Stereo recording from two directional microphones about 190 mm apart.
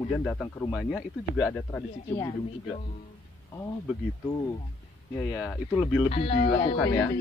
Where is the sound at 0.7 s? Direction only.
Centre (ahead or behind).